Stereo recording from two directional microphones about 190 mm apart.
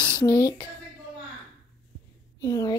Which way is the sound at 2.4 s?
20° left (ahead or behind).